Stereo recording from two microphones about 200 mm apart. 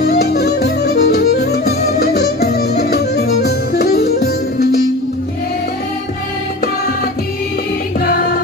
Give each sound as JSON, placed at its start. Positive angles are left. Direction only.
{"t": 0.0, "sound": "music", "side_deg": 55}